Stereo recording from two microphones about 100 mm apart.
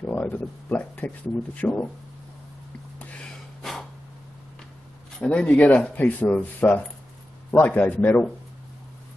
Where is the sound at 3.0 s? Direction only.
15° left (ahead or behind).